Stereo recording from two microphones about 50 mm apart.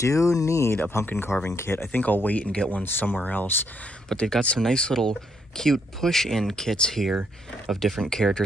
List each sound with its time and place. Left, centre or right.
0.0 s speech: left
1.0 s speech: left
1.9 s speech: left
2.8 s speech: left
4.1 s speech: centre